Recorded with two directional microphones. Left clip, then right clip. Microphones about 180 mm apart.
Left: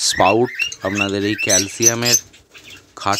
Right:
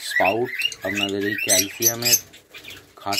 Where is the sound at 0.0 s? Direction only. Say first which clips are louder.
Left 6 dB; 30° left (ahead or behind).